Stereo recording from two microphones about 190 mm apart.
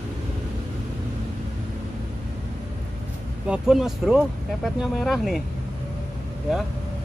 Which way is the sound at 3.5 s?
Centre (ahead or behind).